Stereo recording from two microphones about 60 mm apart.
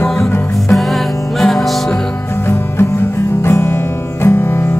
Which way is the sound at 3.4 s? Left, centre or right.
Left.